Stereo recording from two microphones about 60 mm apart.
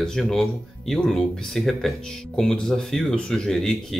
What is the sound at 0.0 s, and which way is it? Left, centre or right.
Speech, centre.